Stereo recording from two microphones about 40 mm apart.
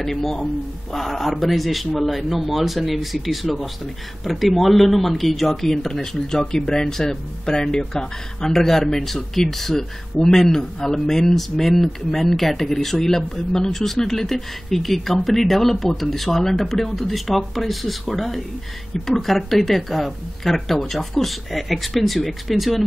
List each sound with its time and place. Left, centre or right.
0.0 s speech: centre